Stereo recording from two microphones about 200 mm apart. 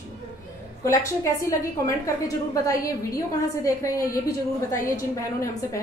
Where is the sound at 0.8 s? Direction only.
15° left (ahead or behind).